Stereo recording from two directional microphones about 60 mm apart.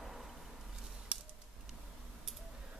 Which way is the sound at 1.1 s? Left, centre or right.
Right.